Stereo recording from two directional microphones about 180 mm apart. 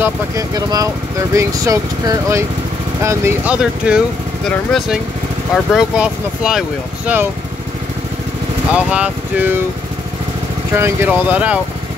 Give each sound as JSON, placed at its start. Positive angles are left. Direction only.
{"t": 0.0, "sound": "speech", "side_deg": -20}
{"t": 8.7, "sound": "speech", "side_deg": -5}
{"t": 10.7, "sound": "speech", "side_deg": -15}